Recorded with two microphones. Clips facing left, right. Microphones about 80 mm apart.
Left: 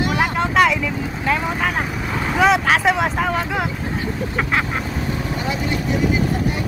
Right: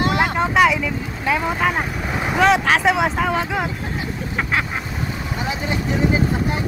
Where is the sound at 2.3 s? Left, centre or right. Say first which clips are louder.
Even; centre.